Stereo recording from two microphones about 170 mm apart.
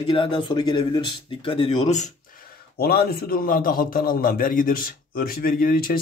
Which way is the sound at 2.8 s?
65° left (ahead or behind).